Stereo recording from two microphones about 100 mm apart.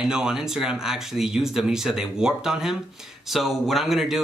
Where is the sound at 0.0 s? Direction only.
5° right (ahead or behind).